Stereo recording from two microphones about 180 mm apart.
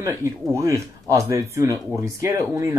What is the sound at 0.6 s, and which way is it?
Speech, 15° right (ahead or behind).